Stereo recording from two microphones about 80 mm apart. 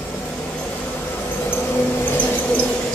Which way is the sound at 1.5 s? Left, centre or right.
Left.